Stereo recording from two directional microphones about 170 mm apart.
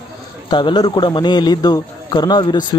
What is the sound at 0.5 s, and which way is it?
A man's voice, 25° left (ahead or behind).